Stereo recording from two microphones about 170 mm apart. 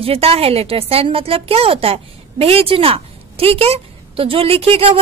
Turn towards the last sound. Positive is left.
turn(degrees=-35)  # may be behind; listen again after turning